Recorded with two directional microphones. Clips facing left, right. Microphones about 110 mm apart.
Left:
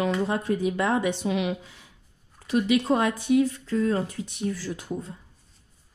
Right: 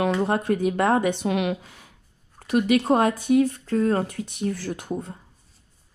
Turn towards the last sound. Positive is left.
turn(degrees=-60)  # may be behind; listen again after turning